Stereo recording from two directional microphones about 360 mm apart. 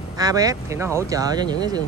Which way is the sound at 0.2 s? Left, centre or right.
Centre.